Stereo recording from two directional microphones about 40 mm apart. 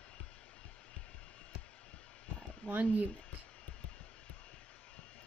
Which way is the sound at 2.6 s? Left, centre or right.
Left.